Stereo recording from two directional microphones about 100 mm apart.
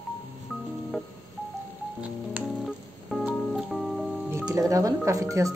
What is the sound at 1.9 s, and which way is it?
Music, 15° right (ahead or behind).